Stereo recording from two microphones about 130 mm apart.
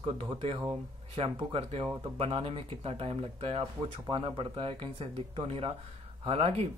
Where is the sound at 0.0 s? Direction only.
45° right (ahead or behind).